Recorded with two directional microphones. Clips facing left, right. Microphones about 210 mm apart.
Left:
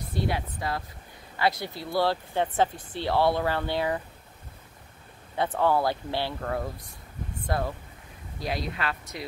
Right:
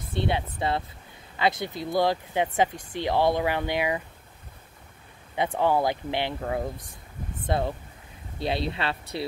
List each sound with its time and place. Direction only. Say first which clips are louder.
0.1 s speech: right 2 dB; 25° right (ahead or behind)
5.3 s speech: right 1 dB; 15° right (ahead or behind)